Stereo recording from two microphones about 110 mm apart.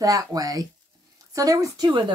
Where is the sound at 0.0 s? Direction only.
30° right (ahead or behind).